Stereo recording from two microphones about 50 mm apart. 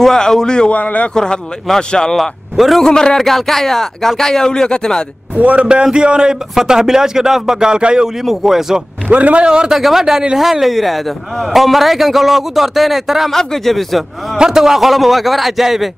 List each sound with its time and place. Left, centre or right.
0.0 s speech: centre
0.7 s speech: left
1.1 s speech: centre
2.1 s speech: centre
2.8 s speech: centre
5.4 s speech: right
5.7 s speech: centre
9.1 s a man's voice: right
9.7 s a man's voice: centre
13.4 s a man's voice: centre
14.4 s a man's voice: centre